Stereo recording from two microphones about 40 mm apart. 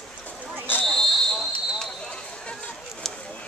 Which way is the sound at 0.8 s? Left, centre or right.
Centre.